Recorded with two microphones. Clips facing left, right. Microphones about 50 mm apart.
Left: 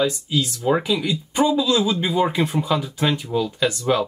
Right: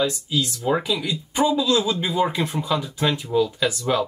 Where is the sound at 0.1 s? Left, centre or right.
Left.